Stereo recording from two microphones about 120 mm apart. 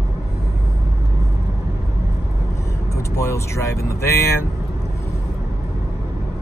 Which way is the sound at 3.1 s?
25° left (ahead or behind).